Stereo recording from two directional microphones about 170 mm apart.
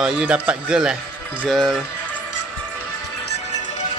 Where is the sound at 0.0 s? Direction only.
5° right (ahead or behind).